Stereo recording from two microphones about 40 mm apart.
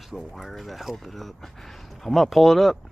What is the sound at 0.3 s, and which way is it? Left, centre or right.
Speech, centre.